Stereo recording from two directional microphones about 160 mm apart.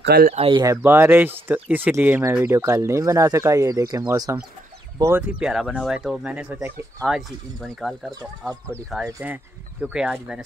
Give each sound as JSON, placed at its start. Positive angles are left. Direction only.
{"t": 0.0, "sound": "speech", "side_deg": -90}
{"t": 0.3, "sound": "speech", "side_deg": -35}
{"t": 0.7, "sound": "speech", "side_deg": -15}